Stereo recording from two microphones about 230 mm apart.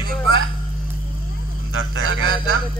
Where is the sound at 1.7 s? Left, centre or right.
Right.